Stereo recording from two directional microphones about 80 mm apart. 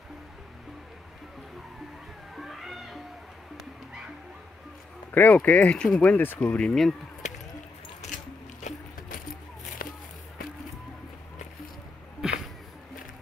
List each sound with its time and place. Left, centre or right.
2.3 s cat: centre
5.1 s speech: left
6.7 s speech: centre
12.2 s a sound: centre